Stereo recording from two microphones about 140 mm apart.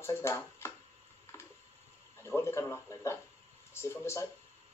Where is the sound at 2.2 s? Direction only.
20° left (ahead or behind).